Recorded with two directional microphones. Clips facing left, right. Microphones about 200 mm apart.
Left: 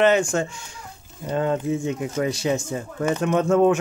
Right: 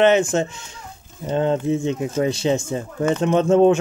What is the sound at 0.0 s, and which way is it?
Speech, 20° right (ahead or behind).